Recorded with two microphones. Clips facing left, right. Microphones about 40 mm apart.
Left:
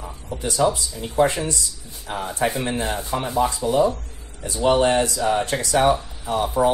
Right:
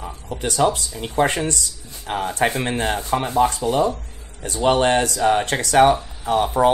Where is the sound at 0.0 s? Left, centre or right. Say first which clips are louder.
Right 2 dB; right.